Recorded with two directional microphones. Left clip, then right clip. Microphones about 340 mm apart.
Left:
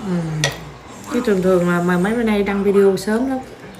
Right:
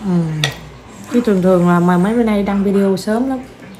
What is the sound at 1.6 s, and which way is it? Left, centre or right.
Speech, centre.